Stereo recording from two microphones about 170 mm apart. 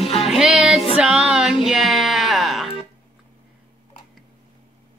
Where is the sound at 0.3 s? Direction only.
5° right (ahead or behind).